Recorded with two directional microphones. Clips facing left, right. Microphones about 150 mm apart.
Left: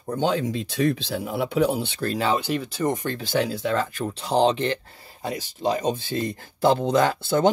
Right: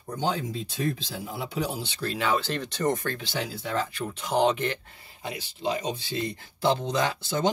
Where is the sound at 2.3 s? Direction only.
10° left (ahead or behind).